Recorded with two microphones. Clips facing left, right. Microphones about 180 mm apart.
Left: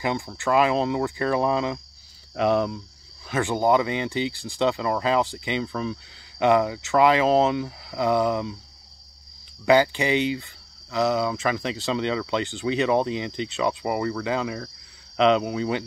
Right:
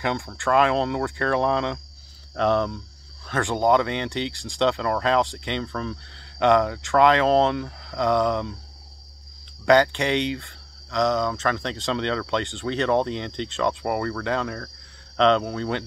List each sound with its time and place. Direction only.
0.0 s speech: 5° left (ahead or behind)
9.7 s speech: 5° left (ahead or behind)